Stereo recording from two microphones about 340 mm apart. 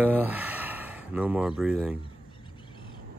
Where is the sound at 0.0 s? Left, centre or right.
Centre.